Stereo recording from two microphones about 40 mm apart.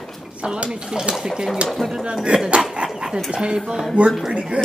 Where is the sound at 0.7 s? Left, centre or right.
Centre.